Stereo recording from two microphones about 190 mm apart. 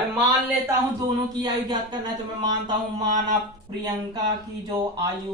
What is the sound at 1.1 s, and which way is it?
Speech, 20° right (ahead or behind).